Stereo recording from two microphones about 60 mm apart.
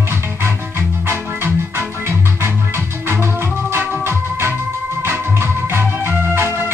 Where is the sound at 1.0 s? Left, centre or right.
Right.